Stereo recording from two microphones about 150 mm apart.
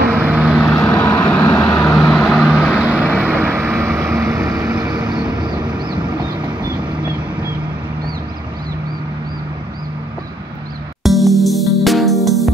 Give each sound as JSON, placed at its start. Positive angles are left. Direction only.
{"t": 0.1, "sound": "vehicle", "side_deg": -10}
{"t": 0.6, "sound": "vehicle", "side_deg": 10}
{"t": 1.7, "sound": "vehicle", "side_deg": 20}
{"t": 2.0, "sound": "vehicle", "side_deg": 5}
{"t": 11.0, "sound": "music", "side_deg": 0}